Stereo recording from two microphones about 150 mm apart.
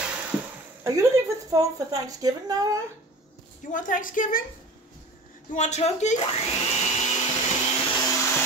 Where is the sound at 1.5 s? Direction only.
25° right (ahead or behind).